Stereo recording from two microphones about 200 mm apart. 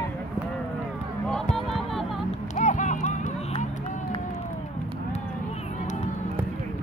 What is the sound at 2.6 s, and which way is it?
Music, 35° left (ahead or behind).